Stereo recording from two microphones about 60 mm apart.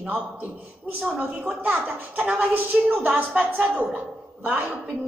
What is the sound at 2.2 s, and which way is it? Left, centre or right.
A man's voice, right.